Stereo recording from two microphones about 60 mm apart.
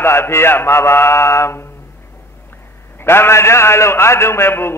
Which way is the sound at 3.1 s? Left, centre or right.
Left.